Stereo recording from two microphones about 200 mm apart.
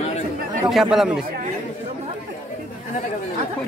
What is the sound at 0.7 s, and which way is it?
Speech, centre (ahead or behind).